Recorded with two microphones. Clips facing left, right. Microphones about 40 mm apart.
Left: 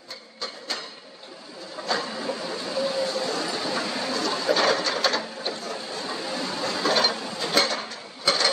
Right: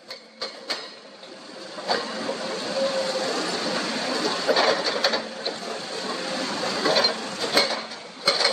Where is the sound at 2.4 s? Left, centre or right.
Right.